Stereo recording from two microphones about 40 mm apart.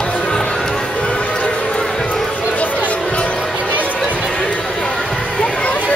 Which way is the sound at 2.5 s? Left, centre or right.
Left.